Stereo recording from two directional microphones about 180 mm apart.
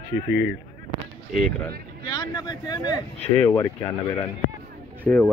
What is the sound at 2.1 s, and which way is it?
Speech, 20° left (ahead or behind).